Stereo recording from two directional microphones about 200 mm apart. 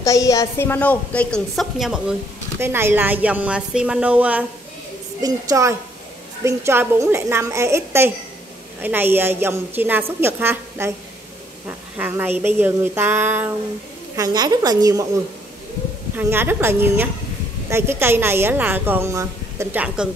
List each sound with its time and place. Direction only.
0.0 s a woman's voice: 15° left (ahead or behind); by 15.0 s 20° right (ahead or behind)
16.2 s a woman's voice: 10° right (ahead or behind)